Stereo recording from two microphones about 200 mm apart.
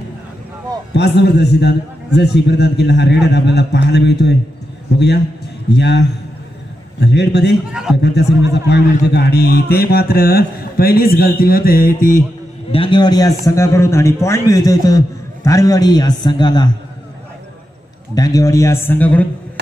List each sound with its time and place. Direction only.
0.9 s a man's voice: 55° left (ahead or behind)
7.7 s a man's voice: 5° right (ahead or behind)
8.0 s a man's voice: 55° left (ahead or behind)
12.7 s a man's voice: 25° left (ahead or behind)
18.1 s a man's voice: 20° left (ahead or behind)